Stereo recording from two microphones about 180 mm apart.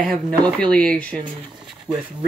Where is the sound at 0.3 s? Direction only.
5° left (ahead or behind).